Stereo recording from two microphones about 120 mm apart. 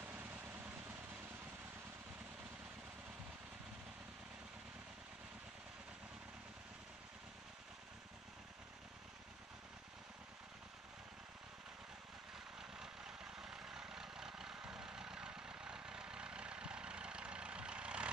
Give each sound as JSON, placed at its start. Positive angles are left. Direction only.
{"t": 0.0, "sound": "vehicle", "side_deg": -15}
{"t": 12.5, "sound": "vehicle", "side_deg": -5}